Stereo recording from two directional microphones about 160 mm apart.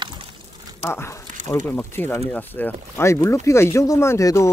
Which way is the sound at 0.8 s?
15° left (ahead or behind).